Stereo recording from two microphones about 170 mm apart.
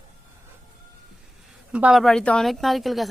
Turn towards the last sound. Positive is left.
turn(degrees=0)  # may be behind; listen again after turning